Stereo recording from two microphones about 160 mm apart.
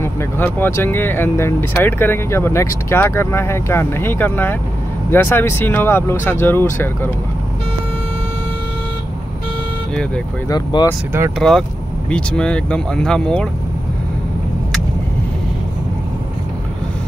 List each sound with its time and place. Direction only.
0.0 s speech: 15° left (ahead or behind)
10.5 s speech: 25° left (ahead or behind)
11.3 s speech: centre (ahead or behind)